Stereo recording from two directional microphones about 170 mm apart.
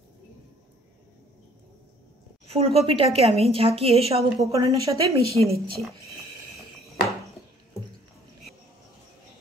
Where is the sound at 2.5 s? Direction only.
35° right (ahead or behind).